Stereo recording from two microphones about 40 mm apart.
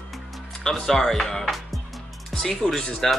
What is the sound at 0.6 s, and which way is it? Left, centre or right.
Speech, centre.